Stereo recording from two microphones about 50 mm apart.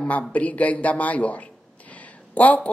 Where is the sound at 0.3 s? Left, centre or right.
Left.